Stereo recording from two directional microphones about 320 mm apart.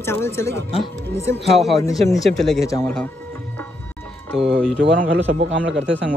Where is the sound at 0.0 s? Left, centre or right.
Centre.